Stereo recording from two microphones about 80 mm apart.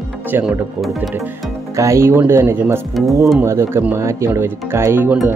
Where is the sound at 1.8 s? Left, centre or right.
Right.